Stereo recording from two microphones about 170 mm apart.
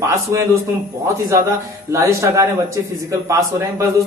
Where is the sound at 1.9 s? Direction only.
15° right (ahead or behind).